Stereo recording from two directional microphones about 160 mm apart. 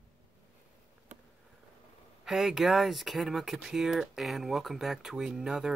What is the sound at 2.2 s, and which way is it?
Speech, 5° right (ahead or behind).